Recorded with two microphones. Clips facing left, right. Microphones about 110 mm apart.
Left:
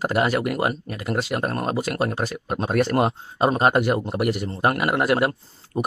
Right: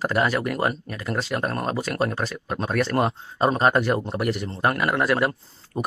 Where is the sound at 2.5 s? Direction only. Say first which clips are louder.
Left 2 dB; 20° left (ahead or behind).